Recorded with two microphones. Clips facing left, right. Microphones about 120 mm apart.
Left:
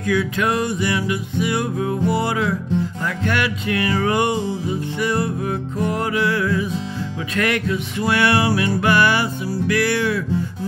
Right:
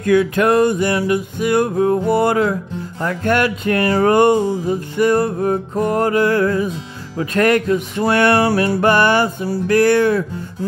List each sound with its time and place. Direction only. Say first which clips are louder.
0.0 s music: right 6 dB; 50° right (ahead or behind)